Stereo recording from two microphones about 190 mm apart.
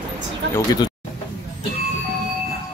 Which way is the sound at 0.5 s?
20° left (ahead or behind).